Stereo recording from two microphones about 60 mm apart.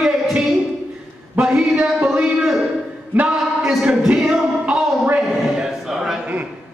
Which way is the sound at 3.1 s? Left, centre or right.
Right.